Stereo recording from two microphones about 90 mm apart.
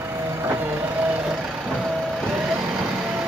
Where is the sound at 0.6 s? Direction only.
25° right (ahead or behind).